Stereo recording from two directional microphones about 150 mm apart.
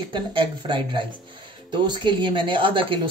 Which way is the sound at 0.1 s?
30° right (ahead or behind).